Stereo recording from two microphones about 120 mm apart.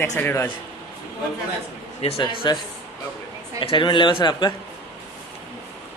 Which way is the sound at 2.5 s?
40° left (ahead or behind).